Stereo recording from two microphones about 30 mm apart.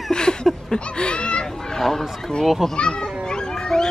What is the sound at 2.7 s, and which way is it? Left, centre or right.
Children playing, left.